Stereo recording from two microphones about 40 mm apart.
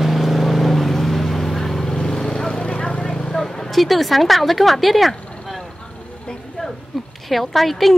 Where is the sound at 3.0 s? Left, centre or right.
Centre.